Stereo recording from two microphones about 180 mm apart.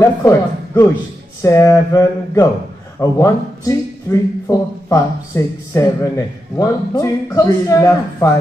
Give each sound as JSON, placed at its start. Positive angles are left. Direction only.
{"t": 0.0, "sound": "a man's voice", "side_deg": 15}